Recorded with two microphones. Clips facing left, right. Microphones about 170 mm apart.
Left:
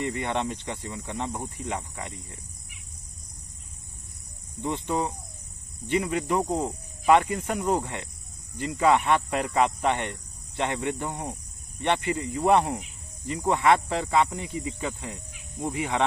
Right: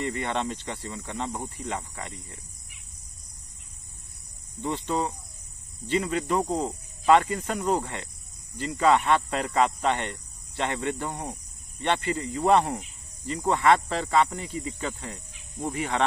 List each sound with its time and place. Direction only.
0.0 s speech: 15° left (ahead or behind)
4.6 s speech: 15° left (ahead or behind)